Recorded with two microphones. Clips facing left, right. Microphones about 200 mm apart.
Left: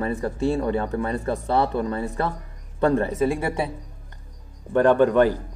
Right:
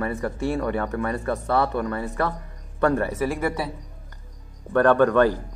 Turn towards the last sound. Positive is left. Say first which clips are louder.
# even
turn(degrees=15)  # may be behind; listen again after turning